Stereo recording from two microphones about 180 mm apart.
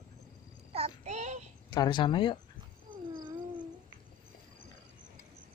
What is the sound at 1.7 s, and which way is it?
Speech, 25° left (ahead or behind).